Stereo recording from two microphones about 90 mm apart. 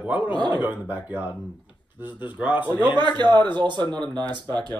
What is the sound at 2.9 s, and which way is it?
A man's voice, 55° right (ahead or behind).